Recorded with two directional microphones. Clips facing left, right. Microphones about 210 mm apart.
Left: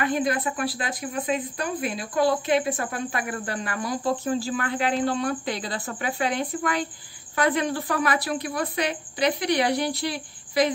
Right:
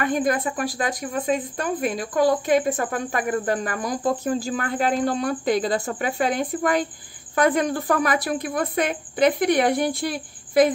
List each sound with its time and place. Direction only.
0.0 s speech: 45° right (ahead or behind)